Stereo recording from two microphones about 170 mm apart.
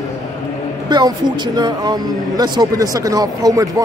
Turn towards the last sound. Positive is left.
turn(degrees=-20)  # may be behind; listen again after turning